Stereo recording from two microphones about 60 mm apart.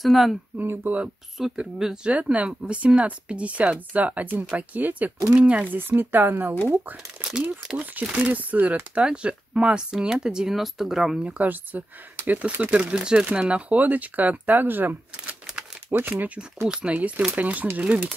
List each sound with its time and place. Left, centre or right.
0.0 s speech: centre
0.6 s speech: right
1.6 s speech: centre
2.0 s speech: right
5.8 s speech: right; by 11.1 s centre
11.2 s speech: right
12.9 s speech: centre; by 16.3 s right
16.6 s speech: centre